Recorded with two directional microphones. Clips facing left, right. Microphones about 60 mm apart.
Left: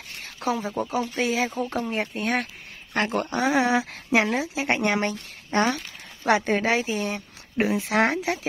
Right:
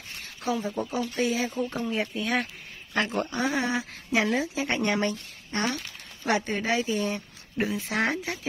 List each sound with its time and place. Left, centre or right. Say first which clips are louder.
0.5 s speech: left 2 dB; left
1.2 s speech: left 2 dB; left
1.8 s speech: left 2 dB; left
2.9 s speech: left 2 dB; left
3.3 s speech: left 5 dB; left